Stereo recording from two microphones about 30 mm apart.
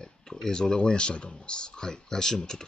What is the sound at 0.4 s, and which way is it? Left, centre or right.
Speech, left.